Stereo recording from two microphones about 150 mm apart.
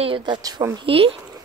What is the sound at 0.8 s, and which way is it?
Speech, 35° right (ahead or behind).